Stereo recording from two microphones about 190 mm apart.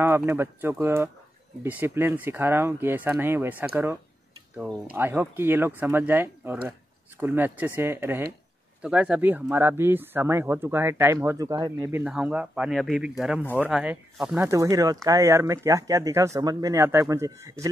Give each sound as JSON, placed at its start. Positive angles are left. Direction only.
{"t": 0.0, "sound": "speech", "side_deg": -10}